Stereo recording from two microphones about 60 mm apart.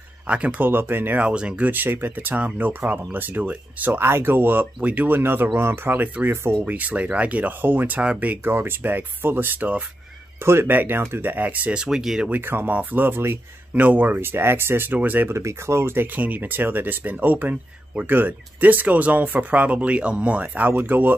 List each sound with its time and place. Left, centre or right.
0.3 s speech: right
0.7 s speech: right
1.2 s speech: centre
1.7 s speech: right
6.6 s speech: right
8.5 s speech: right
10.4 s speech: right
11.7 s speech: centre
12.3 s speech: right
13.7 s speech: right
15.0 s speech: right
15.3 s speech: right
16.1 s speech: right